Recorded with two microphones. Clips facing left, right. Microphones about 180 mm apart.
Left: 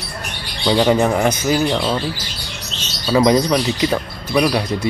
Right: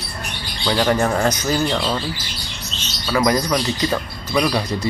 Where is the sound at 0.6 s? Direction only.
15° left (ahead or behind).